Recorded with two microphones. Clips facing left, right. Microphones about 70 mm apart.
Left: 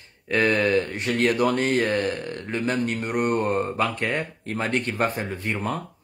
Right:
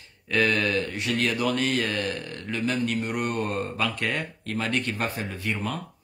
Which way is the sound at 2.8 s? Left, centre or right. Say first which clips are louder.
Left 2 dB; left.